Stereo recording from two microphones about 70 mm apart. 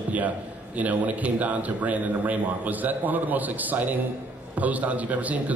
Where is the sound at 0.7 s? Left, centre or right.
Right.